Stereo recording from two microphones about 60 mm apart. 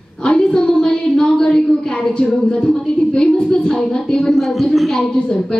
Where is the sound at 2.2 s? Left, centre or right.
Centre.